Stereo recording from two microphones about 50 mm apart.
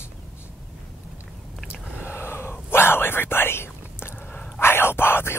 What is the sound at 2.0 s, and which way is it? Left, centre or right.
Whispering, left.